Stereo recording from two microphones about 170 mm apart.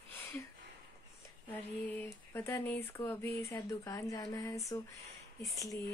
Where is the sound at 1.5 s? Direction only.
10° left (ahead or behind).